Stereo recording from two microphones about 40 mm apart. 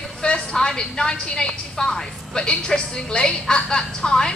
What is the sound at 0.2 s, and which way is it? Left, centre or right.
A woman's voice, centre.